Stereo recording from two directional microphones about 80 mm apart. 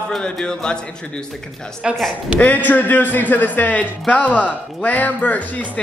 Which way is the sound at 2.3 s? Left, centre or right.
Centre.